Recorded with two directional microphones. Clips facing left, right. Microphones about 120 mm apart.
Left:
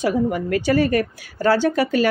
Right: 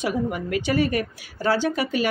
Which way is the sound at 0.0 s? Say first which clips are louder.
Left 5 dB; 40° left (ahead or behind).